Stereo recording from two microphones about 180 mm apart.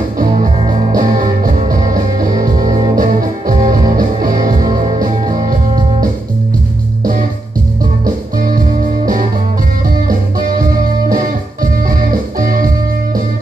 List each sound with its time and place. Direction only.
0.2 s music: 45° right (ahead or behind)
8.0 s music: 50° right (ahead or behind)
12.1 s music: 50° right (ahead or behind)